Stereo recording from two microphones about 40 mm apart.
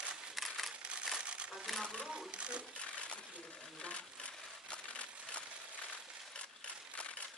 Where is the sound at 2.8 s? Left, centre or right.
Left.